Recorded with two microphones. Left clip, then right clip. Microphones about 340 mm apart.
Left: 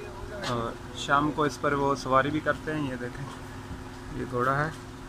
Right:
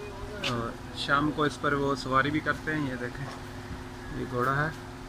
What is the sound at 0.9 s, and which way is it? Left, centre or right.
Speech, centre.